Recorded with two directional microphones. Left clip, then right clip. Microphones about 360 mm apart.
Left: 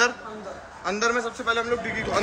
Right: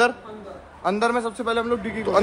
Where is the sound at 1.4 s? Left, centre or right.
Centre.